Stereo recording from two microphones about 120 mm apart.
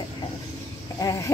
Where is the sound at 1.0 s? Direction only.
25° left (ahead or behind).